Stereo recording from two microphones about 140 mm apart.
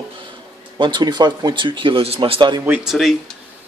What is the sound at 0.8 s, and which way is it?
Speech, 30° right (ahead or behind).